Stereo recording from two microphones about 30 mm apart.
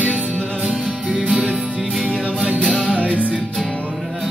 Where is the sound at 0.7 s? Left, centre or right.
Right.